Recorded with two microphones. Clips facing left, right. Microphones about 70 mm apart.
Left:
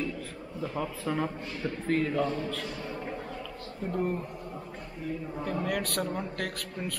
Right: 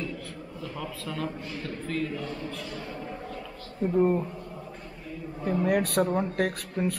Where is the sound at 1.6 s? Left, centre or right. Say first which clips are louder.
Left 4 dB; left.